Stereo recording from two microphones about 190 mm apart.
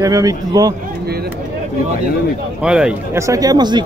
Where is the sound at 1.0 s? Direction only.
55° right (ahead or behind).